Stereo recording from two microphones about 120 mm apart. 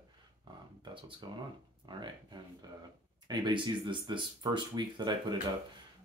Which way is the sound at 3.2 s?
40° right (ahead or behind).